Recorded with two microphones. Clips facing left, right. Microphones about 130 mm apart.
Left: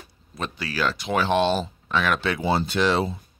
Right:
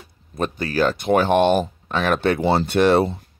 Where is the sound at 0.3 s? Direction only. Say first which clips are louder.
Right 7 dB; 45° right (ahead or behind).